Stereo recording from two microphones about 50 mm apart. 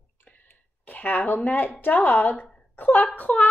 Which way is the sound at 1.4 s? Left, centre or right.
Left.